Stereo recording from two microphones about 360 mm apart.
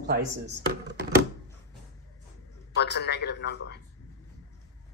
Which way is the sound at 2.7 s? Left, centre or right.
Left.